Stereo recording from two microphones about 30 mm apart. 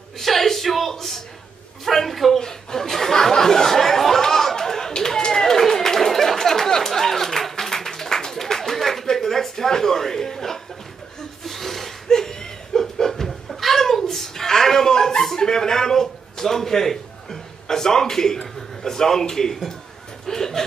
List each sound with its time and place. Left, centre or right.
0.2 s speech: centre
2.4 s a sound: centre
12.1 s laughter: centre
13.0 s a sound: centre
15.3 s a man's voice: left
20.2 s chuckle: centre